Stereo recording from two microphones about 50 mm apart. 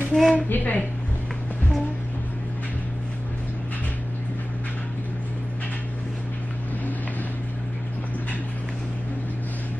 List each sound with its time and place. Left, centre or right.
0.1 s a woman's voice: centre
0.5 s a woman's voice: left